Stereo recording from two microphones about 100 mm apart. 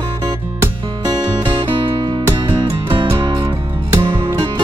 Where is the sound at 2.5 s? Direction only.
60° right (ahead or behind).